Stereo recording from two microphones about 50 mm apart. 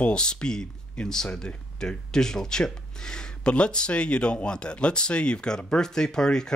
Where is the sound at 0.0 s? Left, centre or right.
Centre.